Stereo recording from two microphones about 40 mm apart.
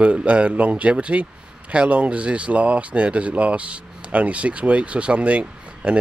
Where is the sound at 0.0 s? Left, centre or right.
Right.